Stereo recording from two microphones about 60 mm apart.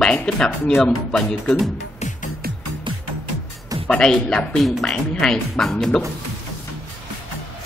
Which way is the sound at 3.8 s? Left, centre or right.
Centre.